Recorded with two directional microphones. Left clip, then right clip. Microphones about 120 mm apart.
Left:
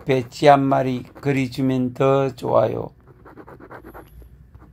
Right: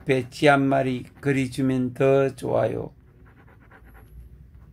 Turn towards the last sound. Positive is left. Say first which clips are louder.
# left 13 dB
turn(degrees=40)  # may be behind; listen again after turning